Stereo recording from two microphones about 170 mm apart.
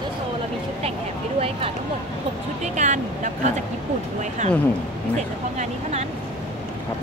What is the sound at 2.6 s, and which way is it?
Speech, 45° right (ahead or behind).